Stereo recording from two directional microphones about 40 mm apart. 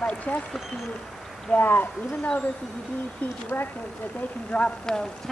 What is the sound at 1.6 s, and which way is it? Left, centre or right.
Speech, left.